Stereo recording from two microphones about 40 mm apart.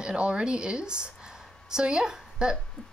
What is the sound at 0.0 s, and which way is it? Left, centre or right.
A woman's voice, right.